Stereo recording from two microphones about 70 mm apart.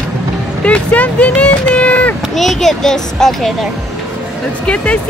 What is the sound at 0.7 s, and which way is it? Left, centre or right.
Speech, left.